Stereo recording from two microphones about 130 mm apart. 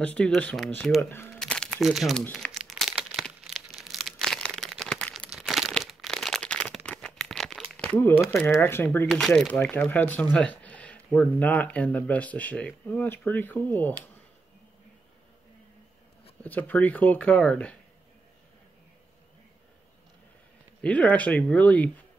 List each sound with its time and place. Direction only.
0.0 s speech: 5° left (ahead or behind)
1.3 s a sound: 5° left (ahead or behind)
2.3 s crumpling: centre (ahead or behind)
3.1 s crumpling: 5° left (ahead or behind)
8.5 s speech: 15° left (ahead or behind)
9.1 s speech: centre (ahead or behind)
9.6 s speech: 15° left (ahead or behind)
16.4 s speech: 15° left (ahead or behind)
20.8 s speech: 10° left (ahead or behind)